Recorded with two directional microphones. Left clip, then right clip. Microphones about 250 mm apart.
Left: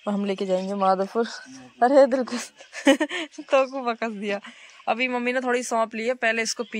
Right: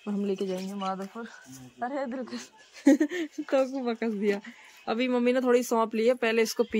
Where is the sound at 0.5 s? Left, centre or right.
Left.